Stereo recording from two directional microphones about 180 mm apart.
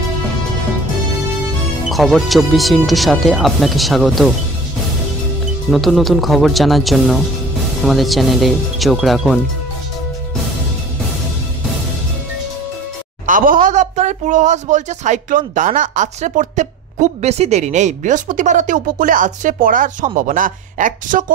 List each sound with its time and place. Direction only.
1.9 s speech: centre (ahead or behind)
5.7 s speech: centre (ahead or behind)
13.3 s speech: 50° right (ahead or behind)